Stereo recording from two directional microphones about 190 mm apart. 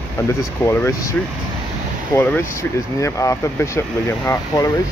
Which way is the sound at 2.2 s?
10° left (ahead or behind).